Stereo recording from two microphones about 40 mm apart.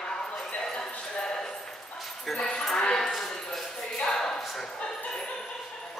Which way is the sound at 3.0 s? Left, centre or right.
Centre.